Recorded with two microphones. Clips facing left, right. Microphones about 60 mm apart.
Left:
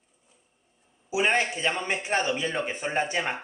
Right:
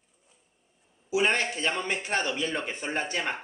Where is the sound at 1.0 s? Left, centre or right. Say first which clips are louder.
Left 1 dB; centre.